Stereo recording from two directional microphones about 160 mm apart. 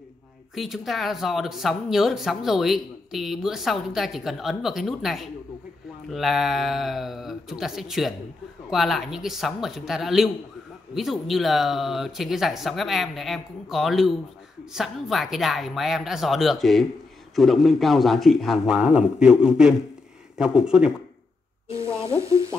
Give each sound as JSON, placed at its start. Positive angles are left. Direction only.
{"t": 0.6, "sound": "speech", "side_deg": 0}
{"t": 21.6, "sound": "sizzle", "side_deg": -15}